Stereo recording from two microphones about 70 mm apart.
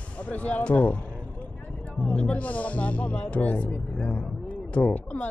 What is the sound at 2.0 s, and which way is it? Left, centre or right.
Speech, centre.